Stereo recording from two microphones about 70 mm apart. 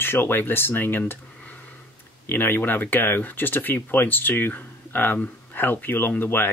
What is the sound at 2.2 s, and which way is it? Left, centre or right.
Speech, left.